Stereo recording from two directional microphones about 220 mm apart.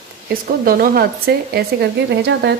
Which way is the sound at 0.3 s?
40° right (ahead or behind).